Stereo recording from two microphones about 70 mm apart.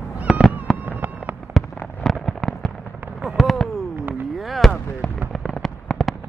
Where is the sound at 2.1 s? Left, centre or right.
Centre.